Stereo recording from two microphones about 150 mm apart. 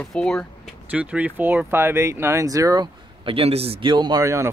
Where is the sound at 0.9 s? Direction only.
10° right (ahead or behind).